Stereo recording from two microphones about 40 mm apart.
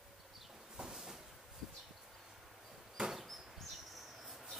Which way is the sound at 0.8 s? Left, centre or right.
Centre.